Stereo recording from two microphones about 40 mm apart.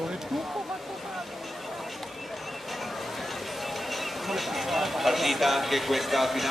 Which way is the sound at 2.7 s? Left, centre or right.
Centre.